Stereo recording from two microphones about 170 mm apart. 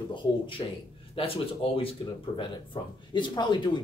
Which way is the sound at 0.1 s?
30° left (ahead or behind).